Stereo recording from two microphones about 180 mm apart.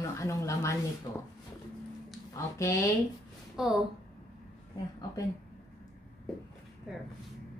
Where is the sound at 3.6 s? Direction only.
5° right (ahead or behind).